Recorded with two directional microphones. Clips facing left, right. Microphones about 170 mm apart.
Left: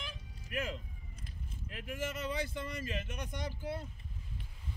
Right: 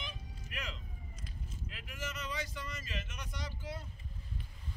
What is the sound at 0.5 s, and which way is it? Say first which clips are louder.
Police car: left 8 dB; 50° left (ahead or behind).